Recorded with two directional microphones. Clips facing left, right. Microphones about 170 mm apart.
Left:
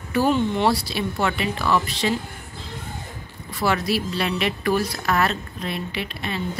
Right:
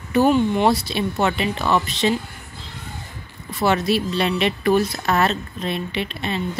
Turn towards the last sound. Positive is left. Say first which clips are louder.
# right 4 dB
turn(degrees=-25)  # may be behind; listen again after turning